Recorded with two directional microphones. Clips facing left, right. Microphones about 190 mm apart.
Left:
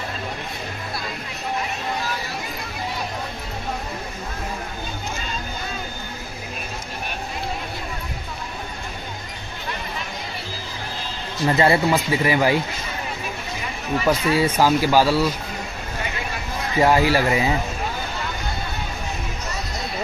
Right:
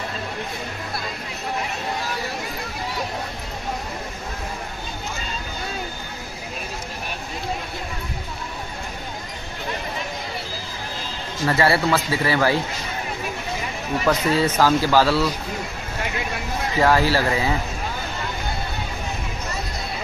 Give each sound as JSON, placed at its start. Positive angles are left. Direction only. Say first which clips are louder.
{"t": 11.4, "sound": "speech", "louder": "left 2 dB", "side_deg": 20}
{"t": 14.0, "sound": "speech", "louder": "even", "side_deg": 10}
{"t": 16.8, "sound": "speech", "louder": "left 1 dB", "side_deg": 15}